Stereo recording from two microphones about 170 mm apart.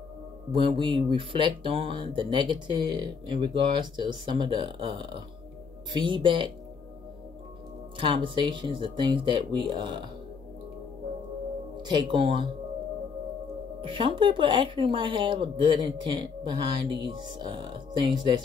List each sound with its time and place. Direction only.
0.5 s a man's voice: 30° right (ahead or behind)
8.0 s speech: 30° right (ahead or behind)
11.7 s speech: 25° right (ahead or behind)
13.7 s speech: 30° right (ahead or behind)